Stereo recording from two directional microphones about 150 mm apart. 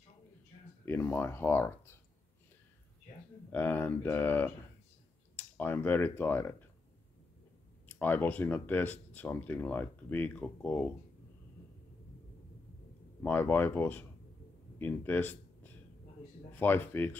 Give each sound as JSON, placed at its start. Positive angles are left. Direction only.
{"t": 0.8, "sound": "speech", "side_deg": 15}
{"t": 3.5, "sound": "speech", "side_deg": 10}
{"t": 7.9, "sound": "speech", "side_deg": 15}
{"t": 13.2, "sound": "speech", "side_deg": 10}
{"t": 14.8, "sound": "a sound", "side_deg": 10}
{"t": 16.5, "sound": "speech", "side_deg": 15}